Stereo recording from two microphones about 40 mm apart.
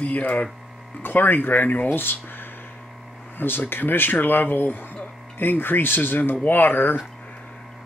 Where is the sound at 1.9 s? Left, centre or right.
Left.